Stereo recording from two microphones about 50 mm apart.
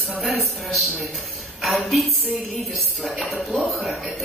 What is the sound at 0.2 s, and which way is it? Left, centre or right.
A woman's voice, centre.